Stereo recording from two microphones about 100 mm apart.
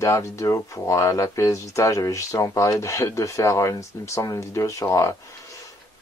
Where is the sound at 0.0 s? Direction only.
30° left (ahead or behind).